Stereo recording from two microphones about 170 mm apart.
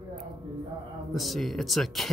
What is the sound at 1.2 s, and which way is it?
Speech, centre (ahead or behind).